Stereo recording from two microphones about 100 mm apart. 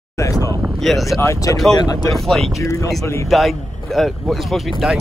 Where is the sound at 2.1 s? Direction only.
Centre (ahead or behind).